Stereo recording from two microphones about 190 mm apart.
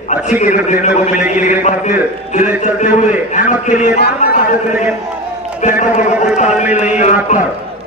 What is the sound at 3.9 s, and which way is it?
Speech, 55° left (ahead or behind).